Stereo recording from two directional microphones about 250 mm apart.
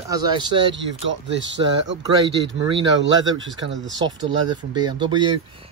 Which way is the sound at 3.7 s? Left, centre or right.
Right.